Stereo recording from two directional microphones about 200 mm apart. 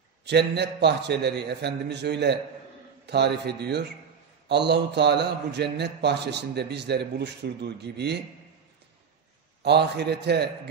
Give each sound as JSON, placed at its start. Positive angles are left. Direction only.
{"t": 0.2, "sound": "a man's voice", "side_deg": -55}
{"t": 9.6, "sound": "a man's voice", "side_deg": -55}